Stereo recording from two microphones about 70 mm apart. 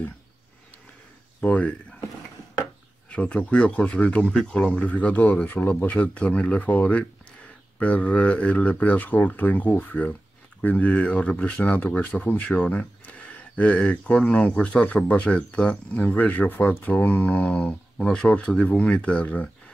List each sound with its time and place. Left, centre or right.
1.4 s speech: left
3.1 s speech: centre
4.7 s speech: left
17.3 s a sound: centre
18.1 s speech: centre